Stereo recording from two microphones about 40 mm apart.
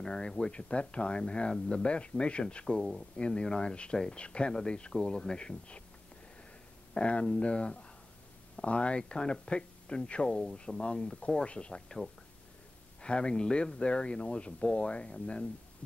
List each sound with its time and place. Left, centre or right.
0.0 s speech: centre
2.6 s speech: centre
6.9 s speech: left
11.7 s speech: centre